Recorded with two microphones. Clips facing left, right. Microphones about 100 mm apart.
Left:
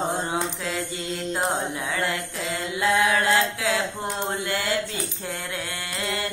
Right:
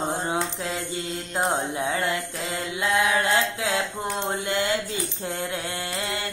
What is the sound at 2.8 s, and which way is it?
Mantra, 20° right (ahead or behind).